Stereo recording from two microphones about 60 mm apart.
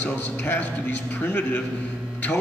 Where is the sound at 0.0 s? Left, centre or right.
Left.